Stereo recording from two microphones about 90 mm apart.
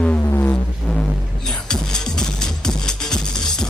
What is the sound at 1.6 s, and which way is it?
Music, 5° left (ahead or behind).